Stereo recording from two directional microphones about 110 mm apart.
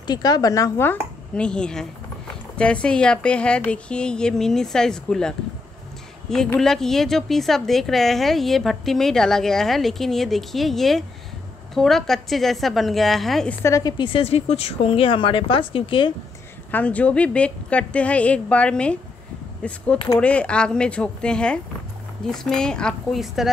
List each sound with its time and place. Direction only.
0.0 s a woman's voice: 40° left (ahead or behind)
0.8 s a woman's voice: 10° left (ahead or behind)
6.3 s a woman's voice: 5° left (ahead or behind)
13.5 s a woman's voice: 25° left (ahead or behind)
13.9 s speech: 50° left (ahead or behind)
16.7 s a woman's voice: 10° left (ahead or behind)